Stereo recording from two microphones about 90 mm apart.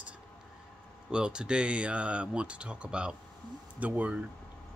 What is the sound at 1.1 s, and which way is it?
Speech, 10° right (ahead or behind).